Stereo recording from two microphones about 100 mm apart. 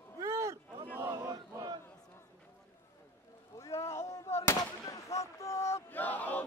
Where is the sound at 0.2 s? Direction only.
30° right (ahead or behind).